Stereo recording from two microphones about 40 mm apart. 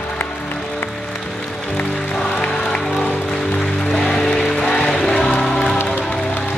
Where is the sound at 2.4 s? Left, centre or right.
Left.